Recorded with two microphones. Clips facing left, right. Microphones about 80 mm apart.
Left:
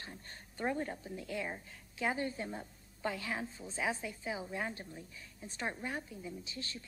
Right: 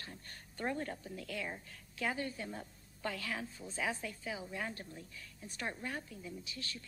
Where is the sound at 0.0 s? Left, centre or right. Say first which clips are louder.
Left 1 dB; left.